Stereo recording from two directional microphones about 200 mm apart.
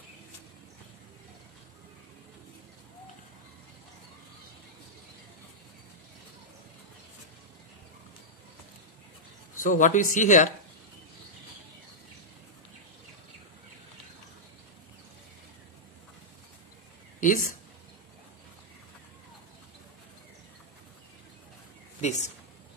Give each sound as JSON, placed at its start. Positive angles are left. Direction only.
{"t": 9.6, "sound": "a man's voice", "side_deg": 40}
{"t": 17.2, "sound": "speech", "side_deg": 40}
{"t": 22.0, "sound": "speech", "side_deg": 35}